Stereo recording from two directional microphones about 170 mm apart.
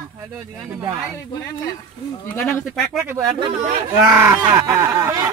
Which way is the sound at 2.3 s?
5° left (ahead or behind).